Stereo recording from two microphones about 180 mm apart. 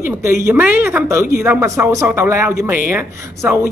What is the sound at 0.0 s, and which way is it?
Speech, 15° right (ahead or behind).